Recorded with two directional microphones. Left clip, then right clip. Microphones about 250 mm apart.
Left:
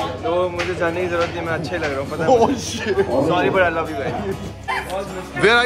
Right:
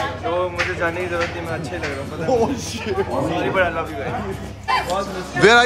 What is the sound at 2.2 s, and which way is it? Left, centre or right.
Speech, left.